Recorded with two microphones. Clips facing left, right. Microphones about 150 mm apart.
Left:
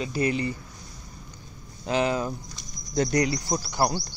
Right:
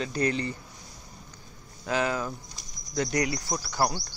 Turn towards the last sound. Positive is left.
turn(degrees=20)  # may be behind; listen again after turning